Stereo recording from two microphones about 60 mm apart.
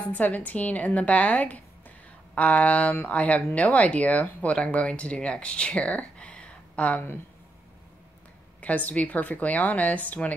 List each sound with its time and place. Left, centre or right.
0.0 s speech: left
8.5 s speech: left